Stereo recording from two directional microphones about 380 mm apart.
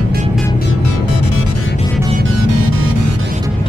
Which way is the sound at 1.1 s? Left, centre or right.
Left.